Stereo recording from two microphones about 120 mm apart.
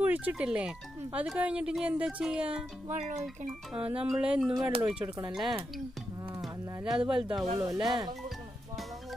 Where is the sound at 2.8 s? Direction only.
75° right (ahead or behind).